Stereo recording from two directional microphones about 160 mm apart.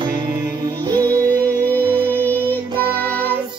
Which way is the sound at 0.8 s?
20° right (ahead or behind).